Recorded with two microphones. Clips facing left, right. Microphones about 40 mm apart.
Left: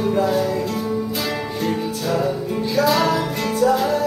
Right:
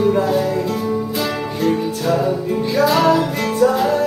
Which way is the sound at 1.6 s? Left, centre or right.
Centre.